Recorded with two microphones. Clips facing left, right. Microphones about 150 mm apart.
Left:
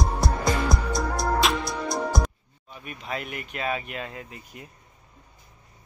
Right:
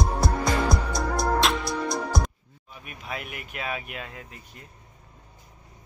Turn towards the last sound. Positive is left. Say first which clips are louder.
# left 3 dB
turn(degrees=0)  # may be behind; listen again after turning